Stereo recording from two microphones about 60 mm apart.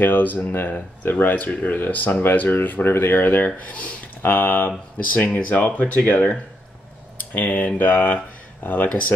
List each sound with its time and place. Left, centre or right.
0.0 s speech: left
7.3 s speech: left